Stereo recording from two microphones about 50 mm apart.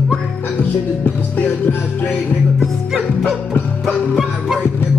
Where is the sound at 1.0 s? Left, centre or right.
Left.